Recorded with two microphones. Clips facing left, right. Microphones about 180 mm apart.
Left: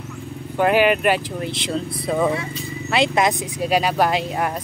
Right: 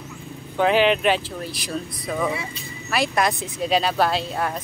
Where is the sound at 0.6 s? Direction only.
10° left (ahead or behind).